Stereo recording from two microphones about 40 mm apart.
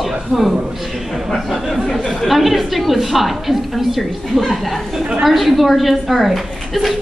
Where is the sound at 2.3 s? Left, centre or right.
Centre.